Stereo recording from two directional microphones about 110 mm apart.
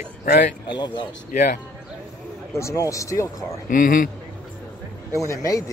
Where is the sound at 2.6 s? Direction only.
30° left (ahead or behind).